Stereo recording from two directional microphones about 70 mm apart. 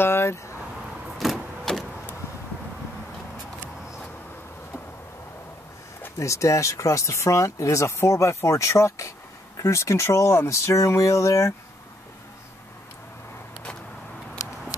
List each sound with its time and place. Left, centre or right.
0.0 s vehicle: left
1.1 s vehicle: centre
6.1 s speech: left